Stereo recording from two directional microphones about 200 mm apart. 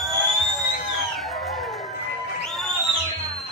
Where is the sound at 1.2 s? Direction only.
Centre (ahead or behind).